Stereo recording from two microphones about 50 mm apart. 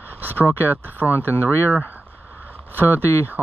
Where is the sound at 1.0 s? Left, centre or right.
Left.